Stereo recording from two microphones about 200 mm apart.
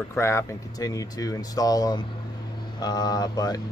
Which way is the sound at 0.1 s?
15° left (ahead or behind).